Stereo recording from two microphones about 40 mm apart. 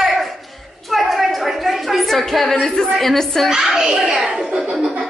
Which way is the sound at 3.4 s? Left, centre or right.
Centre.